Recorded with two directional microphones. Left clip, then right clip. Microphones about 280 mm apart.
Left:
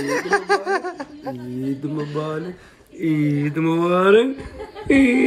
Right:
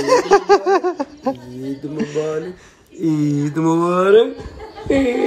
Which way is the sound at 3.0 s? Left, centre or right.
Centre.